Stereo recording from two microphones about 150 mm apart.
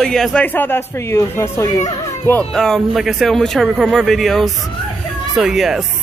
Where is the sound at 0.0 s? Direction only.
5° left (ahead or behind).